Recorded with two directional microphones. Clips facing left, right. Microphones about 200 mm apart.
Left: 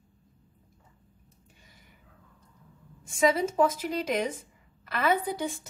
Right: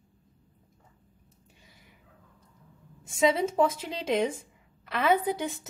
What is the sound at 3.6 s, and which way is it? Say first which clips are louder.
A woman's voice: left 1 dB; 25° right (ahead or behind).